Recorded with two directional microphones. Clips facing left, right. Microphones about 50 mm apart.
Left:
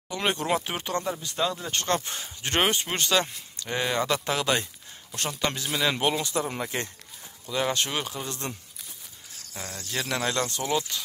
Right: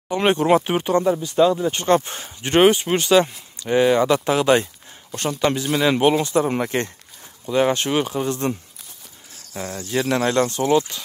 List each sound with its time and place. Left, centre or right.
0.1 s speech: right; by 2.0 s centre
2.0 s speech: right
2.5 s speech: centre
5.1 s speech: centre; by 6.4 s right
6.4 s speech: right
7.4 s speech: right
9.8 s speech: right